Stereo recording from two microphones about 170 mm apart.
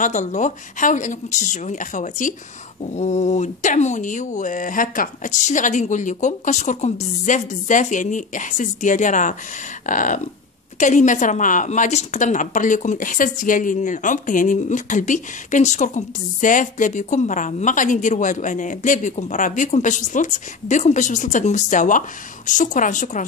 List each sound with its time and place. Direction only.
0.0 s a woman's voice: 45° left (ahead or behind)